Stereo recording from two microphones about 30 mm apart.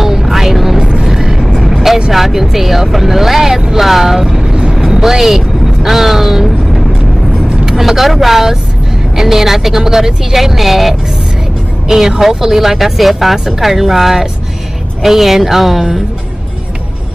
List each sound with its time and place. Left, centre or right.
0.0 s music: centre
1.0 s vehicle: centre
2.0 s a woman's voice: centre
4.5 s vehicle: right
5.0 s vehicle: centre
7.7 s a woman's voice: centre
12.2 s speech: centre